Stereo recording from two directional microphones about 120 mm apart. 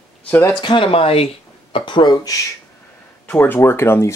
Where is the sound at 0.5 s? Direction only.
45° left (ahead or behind).